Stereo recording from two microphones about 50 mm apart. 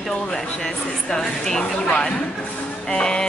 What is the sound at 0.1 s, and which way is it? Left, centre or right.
Speech, centre.